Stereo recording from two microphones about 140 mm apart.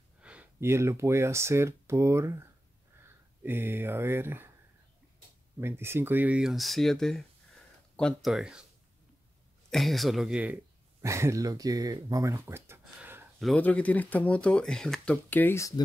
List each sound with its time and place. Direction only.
0.2 s speech: 10° right (ahead or behind)
3.4 s speech: 15° right (ahead or behind)
5.6 s speech: 15° right (ahead or behind)
9.7 s speech: centre (ahead or behind); by 13.3 s 15° right (ahead or behind)
13.6 s speech: 10° left (ahead or behind)